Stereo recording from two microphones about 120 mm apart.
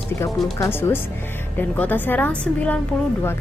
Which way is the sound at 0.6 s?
20° left (ahead or behind).